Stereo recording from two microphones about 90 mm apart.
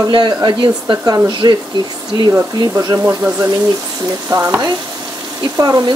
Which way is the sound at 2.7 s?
40° right (ahead or behind).